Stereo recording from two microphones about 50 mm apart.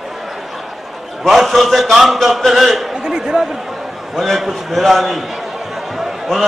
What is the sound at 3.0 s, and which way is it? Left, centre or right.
Speech, centre.